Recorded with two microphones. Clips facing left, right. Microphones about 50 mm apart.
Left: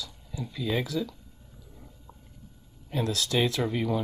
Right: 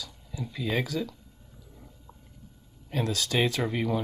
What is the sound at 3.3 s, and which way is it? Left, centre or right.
Speech, centre.